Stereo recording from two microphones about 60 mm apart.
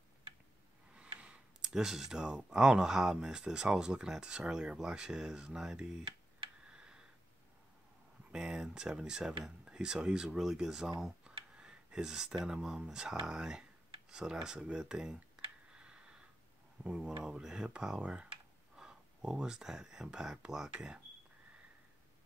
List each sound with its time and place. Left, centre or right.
0.9 s a sound: centre
1.7 s speech: centre
6.7 s tick: centre
8.3 s speech: centre
11.2 s a sound: centre
12.4 s speech: centre
15.7 s tick: centre
17.0 s speech: centre